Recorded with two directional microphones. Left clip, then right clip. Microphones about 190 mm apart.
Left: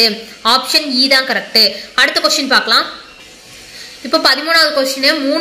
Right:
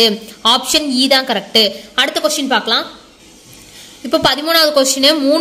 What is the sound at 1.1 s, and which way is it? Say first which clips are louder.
Speech: right 1 dB; 35° right (ahead or behind).